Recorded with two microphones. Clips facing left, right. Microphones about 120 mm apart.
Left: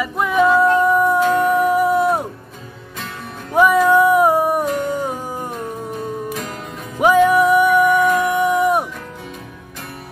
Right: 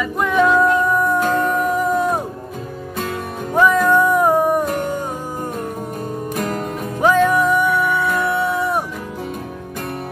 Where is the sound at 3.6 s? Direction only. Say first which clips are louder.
Left 2 dB; 10° left (ahead or behind).